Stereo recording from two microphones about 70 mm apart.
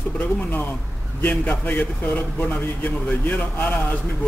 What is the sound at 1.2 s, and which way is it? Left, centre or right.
A man's voice, left.